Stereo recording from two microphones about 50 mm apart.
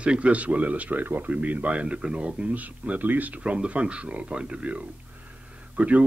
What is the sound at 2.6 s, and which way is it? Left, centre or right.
Speech, right.